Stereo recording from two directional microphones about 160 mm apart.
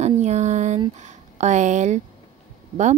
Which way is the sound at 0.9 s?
45° right (ahead or behind).